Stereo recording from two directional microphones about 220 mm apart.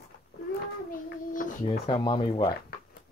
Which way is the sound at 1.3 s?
35° left (ahead or behind).